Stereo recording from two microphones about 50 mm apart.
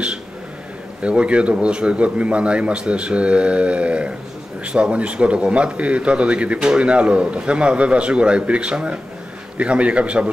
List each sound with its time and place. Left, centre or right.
1.0 s a man's voice: right